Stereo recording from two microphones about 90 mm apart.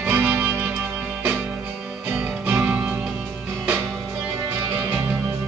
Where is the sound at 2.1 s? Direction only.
15° right (ahead or behind).